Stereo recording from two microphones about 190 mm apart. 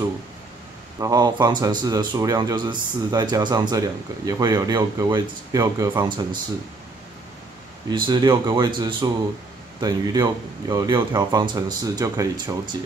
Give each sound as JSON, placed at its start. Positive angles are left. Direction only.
{"t": 0.9, "sound": "speech", "side_deg": -20}
{"t": 7.9, "sound": "speech", "side_deg": -25}